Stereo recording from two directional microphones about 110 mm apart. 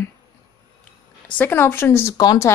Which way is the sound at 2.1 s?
30° left (ahead or behind).